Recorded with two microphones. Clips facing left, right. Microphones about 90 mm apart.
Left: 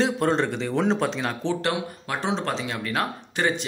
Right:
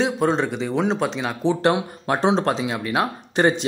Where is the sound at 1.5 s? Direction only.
20° right (ahead or behind).